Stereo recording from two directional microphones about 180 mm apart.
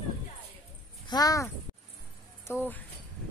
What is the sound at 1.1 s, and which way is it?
Speech, 20° left (ahead or behind).